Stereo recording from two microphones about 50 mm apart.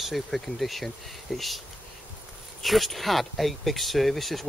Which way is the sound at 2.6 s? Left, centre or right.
Centre.